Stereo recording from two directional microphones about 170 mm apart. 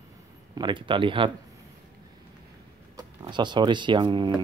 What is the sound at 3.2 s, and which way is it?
Speech, 25° right (ahead or behind).